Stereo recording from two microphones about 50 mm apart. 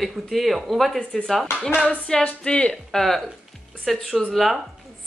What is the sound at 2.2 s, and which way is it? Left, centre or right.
Speech, centre.